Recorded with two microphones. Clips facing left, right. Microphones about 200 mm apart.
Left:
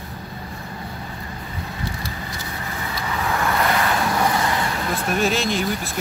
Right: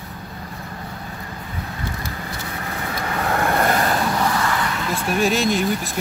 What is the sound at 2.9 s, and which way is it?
Vehicle, 55° right (ahead or behind).